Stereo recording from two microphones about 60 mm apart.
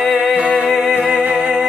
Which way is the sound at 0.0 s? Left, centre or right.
Centre.